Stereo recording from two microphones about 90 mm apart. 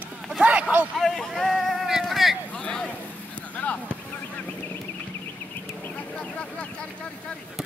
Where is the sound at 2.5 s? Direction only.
10° left (ahead or behind).